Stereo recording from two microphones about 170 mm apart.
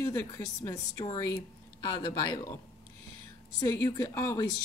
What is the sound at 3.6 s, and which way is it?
Speech, 20° left (ahead or behind).